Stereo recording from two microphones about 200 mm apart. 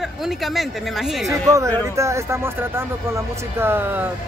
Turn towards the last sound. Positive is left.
turn(degrees=-10)  # may be behind; listen again after turning